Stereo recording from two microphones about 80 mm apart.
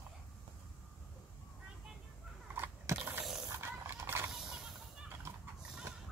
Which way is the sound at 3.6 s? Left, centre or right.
Right.